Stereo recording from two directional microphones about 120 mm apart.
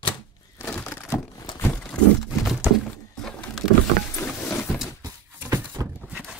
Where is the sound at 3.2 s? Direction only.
5° left (ahead or behind).